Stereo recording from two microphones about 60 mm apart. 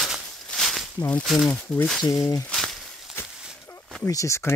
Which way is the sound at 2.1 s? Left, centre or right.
Left.